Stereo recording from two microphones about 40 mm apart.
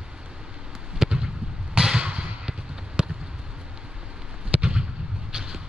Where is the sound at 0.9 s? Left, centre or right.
Centre.